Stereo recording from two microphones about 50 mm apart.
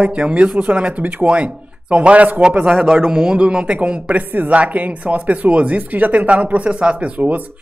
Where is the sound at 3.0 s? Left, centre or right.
Centre; by 7.4 s right.